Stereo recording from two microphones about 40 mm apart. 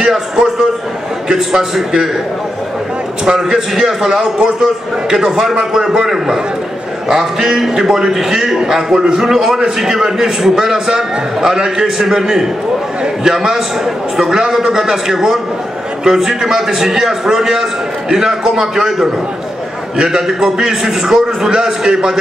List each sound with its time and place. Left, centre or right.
0.0 s a sound: centre
1.3 s a man's voice: centre
3.3 s a man's voice: centre